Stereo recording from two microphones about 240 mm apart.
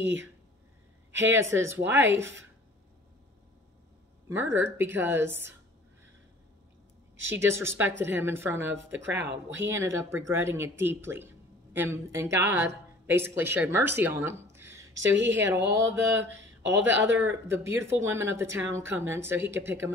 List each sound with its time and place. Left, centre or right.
1.1 s speech: right
1.4 s a woman's voice: centre
4.3 s a woman's voice: centre
7.3 s a woman's voice: centre
8.9 s speech: right
9.7 s a woman's voice: centre
15.0 s speech: right
15.7 s a woman's voice: centre
16.3 s speech: right
17.2 s a woman's voice: centre